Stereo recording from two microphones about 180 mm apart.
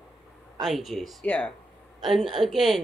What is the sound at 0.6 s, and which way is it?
Speech, centre (ahead or behind).